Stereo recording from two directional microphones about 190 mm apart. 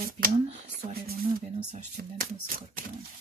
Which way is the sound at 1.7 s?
35° right (ahead or behind).